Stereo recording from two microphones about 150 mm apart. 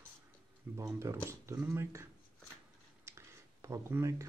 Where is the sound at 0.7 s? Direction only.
20° right (ahead or behind).